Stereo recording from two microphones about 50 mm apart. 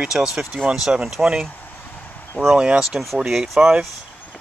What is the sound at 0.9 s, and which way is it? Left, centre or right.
Speech, centre.